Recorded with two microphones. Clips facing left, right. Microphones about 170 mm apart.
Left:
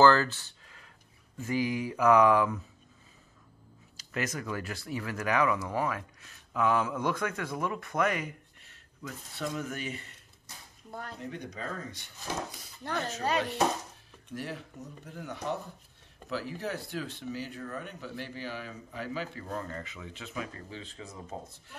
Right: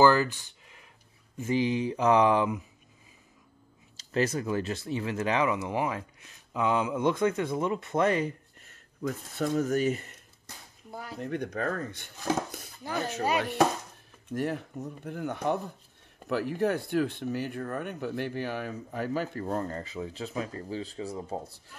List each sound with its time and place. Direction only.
0.0 s a sound: 15° right (ahead or behind)
1.4 s speech: 25° right (ahead or behind)
3.9 s speech: 30° right (ahead or behind)
8.6 s speech: 45° right (ahead or behind)
10.9 s speech: 5° right (ahead or behind)
11.1 s speech: 55° right (ahead or behind)
14.3 s speech: 50° right (ahead or behind); by 21.5 s 35° right (ahead or behind)